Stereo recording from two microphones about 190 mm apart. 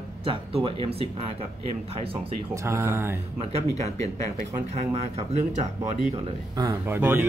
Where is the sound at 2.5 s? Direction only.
15° right (ahead or behind).